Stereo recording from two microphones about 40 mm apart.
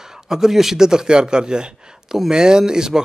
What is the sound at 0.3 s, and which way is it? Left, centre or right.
Speech, centre.